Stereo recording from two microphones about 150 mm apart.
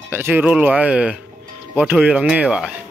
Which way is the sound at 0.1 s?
15° right (ahead or behind).